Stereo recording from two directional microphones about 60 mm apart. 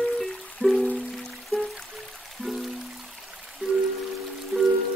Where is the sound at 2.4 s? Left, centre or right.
Centre.